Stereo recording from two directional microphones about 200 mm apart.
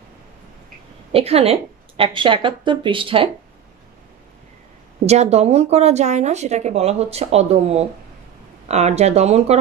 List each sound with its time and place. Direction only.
1.1 s a woman's voice: 30° right (ahead or behind)
5.0 s speech: 35° right (ahead or behind)